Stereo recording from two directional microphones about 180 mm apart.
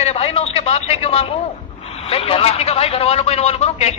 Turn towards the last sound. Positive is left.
turn(degrees=35)  # may be behind; listen again after turning